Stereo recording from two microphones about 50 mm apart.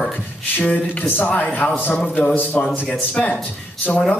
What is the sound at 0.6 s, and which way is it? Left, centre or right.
A man's voice, left.